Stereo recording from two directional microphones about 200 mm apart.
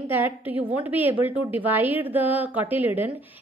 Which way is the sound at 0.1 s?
10° right (ahead or behind).